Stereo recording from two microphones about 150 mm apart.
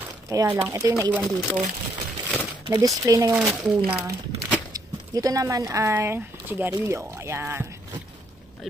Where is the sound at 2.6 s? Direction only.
25° right (ahead or behind).